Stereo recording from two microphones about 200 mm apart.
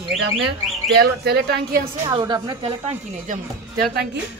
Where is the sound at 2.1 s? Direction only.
20° right (ahead or behind).